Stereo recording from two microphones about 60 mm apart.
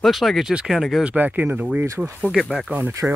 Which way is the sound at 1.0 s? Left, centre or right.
Right.